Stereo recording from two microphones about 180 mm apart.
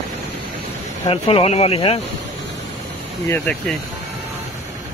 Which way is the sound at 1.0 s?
30° left (ahead or behind).